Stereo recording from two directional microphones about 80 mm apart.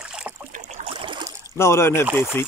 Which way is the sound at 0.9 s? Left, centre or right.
Right.